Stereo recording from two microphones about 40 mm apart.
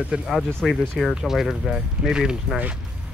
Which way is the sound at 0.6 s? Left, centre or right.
Centre.